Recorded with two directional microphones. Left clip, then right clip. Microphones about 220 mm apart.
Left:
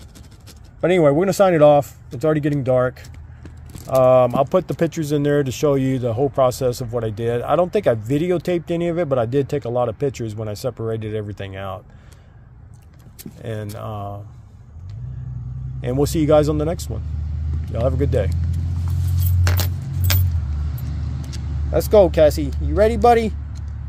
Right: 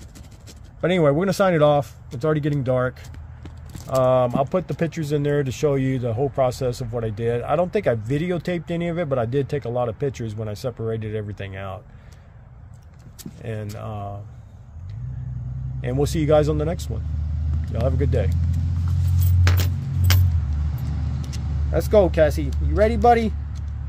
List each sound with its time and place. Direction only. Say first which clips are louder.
0.7 s speech: left 4 dB; 20° left (ahead or behind)
13.4 s speech: left 3 dB; 25° left (ahead or behind)
15.8 s speech: left 4 dB; 20° left (ahead or behind)
21.3 s speech: left 5 dB; 25° left (ahead or behind)